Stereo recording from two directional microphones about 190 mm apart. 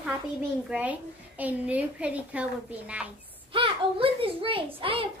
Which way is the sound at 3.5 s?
30° right (ahead or behind).